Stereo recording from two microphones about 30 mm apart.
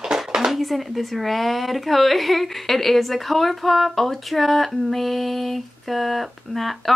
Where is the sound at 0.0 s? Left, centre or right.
Right.